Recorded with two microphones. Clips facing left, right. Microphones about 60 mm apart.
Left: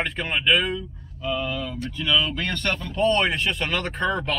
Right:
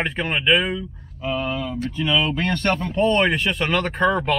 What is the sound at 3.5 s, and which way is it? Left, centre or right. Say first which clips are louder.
Speech: right 4 dB; centre.